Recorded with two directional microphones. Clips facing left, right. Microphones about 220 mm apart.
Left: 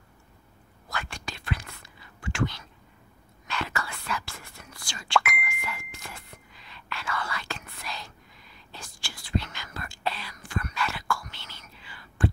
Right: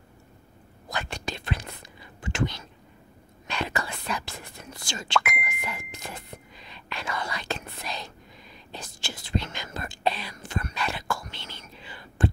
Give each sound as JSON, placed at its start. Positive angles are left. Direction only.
{"t": 0.8, "sound": "whispering", "side_deg": -20}